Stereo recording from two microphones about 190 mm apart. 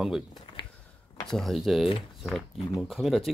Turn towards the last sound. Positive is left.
turn(degrees=0)  # may be behind; listen again after turning